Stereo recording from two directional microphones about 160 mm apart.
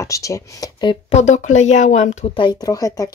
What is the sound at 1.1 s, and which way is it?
A woman's voice, 45° left (ahead or behind).